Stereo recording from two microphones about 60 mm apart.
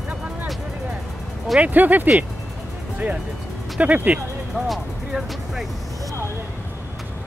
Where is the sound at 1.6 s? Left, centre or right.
Right.